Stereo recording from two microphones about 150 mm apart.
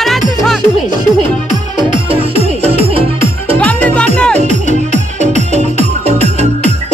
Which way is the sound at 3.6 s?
10° left (ahead or behind).